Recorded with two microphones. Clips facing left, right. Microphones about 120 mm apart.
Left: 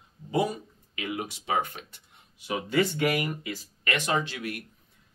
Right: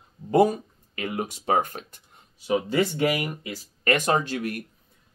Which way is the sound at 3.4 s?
45° right (ahead or behind).